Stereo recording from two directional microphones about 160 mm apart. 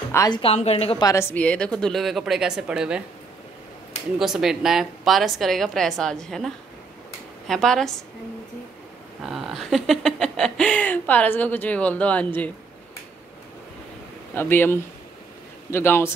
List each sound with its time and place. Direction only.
0.1 s a woman's voice: 20° left (ahead or behind)
0.4 s a woman's voice: 40° left (ahead or behind)
1.0 s a woman's voice: 15° left (ahead or behind); by 3.0 s 5° right (ahead or behind)
4.2 s a woman's voice: centre (ahead or behind)
9.2 s speech: centre (ahead or behind)
14.3 s speech: 15° left (ahead or behind)